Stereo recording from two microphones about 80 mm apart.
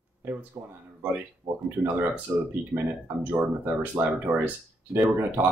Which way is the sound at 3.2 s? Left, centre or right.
Right.